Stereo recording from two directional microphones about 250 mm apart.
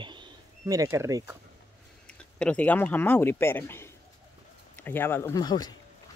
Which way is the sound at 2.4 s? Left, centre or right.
Centre.